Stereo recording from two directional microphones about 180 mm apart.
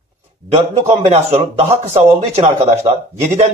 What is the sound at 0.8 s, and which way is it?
Speech, 35° right (ahead or behind).